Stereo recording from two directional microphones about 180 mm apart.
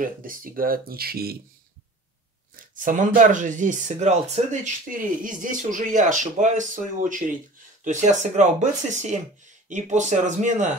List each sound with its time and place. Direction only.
0.0 s speech: 50° right (ahead or behind)
2.5 s speech: 50° right (ahead or behind)